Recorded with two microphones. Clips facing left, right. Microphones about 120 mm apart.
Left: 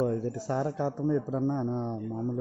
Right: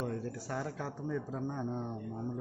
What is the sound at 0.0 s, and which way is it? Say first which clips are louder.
A man's voice: left 9 dB; 30° left (ahead or behind).